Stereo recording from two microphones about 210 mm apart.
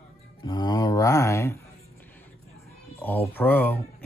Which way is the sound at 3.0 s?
10° left (ahead or behind).